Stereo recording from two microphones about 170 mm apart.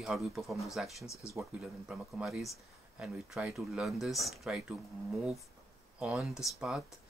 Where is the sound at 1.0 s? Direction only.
15° left (ahead or behind).